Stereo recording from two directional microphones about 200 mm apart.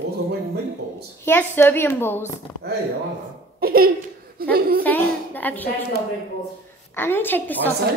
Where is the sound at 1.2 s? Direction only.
10° left (ahead or behind).